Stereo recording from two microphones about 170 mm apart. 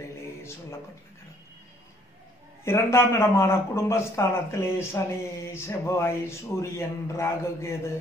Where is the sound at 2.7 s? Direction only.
15° left (ahead or behind).